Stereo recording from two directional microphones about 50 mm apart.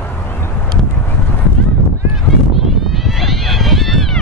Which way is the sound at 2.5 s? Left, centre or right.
Centre.